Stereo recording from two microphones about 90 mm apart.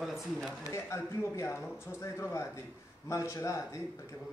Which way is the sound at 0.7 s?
35° left (ahead or behind).